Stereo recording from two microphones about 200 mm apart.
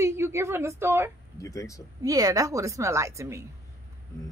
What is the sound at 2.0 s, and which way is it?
A woman's voice, 15° right (ahead or behind).